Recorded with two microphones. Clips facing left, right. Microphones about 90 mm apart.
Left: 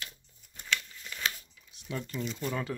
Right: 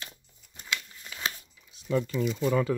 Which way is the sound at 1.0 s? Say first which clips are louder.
Right 1 dB; 20° right (ahead or behind).